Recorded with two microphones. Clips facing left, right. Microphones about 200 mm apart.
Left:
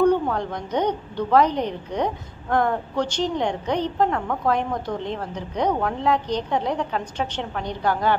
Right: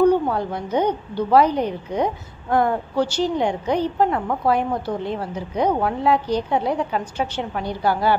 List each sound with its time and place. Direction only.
0.0 s a woman's voice: 5° right (ahead or behind)